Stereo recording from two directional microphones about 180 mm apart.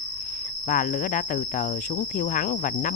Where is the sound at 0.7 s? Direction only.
50° left (ahead or behind).